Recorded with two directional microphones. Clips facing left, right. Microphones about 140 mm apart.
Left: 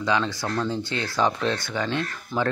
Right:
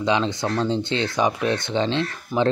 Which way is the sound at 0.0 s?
20° right (ahead or behind).